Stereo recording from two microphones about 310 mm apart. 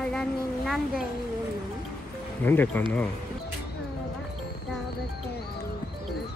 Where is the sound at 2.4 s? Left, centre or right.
Centre.